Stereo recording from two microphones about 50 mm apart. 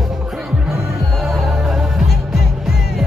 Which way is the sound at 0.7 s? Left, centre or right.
Centre.